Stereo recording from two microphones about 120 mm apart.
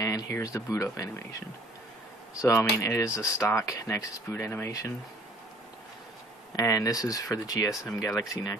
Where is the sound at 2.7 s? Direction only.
25° left (ahead or behind).